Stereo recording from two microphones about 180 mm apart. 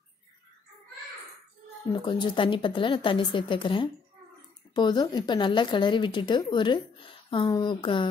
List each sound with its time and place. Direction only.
1.9 s speech: 25° left (ahead or behind)